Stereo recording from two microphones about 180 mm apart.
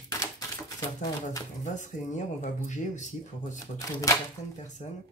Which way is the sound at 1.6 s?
40° left (ahead or behind).